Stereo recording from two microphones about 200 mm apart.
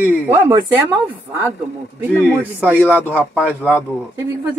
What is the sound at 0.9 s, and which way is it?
Speech, 10° right (ahead or behind).